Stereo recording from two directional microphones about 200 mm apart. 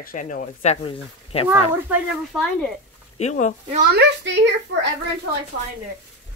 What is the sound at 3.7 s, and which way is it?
A child's voice, 50° right (ahead or behind).